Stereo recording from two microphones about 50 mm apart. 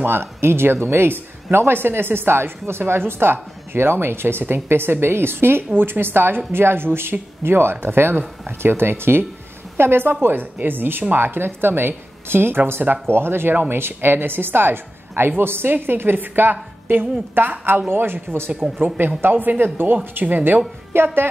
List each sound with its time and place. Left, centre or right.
0.0 s speech: right
20.9 s speech: right